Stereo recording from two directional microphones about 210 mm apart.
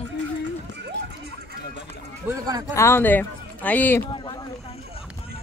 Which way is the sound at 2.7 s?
10° left (ahead or behind).